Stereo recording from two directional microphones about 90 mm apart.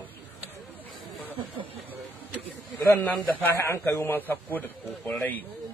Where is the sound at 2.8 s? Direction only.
20° left (ahead or behind).